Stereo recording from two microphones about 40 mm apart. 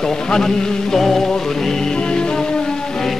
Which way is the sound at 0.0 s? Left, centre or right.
Centre.